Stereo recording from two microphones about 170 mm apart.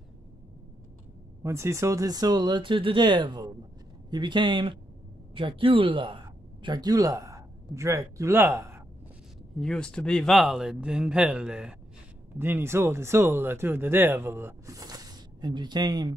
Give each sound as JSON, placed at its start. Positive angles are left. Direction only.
{"t": 1.4, "sound": "speech", "side_deg": -15}
{"t": 9.6, "sound": "a man's voice", "side_deg": 5}